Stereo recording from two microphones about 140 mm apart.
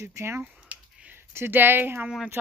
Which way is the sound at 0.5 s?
10° right (ahead or behind).